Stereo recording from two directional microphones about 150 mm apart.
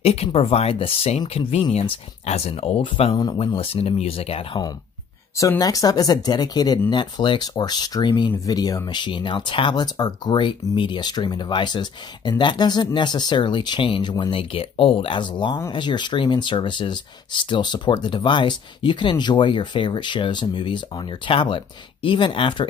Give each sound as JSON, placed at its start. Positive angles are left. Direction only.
{"t": 0.0, "sound": "speech", "side_deg": 45}
{"t": 5.4, "sound": "speech", "side_deg": 20}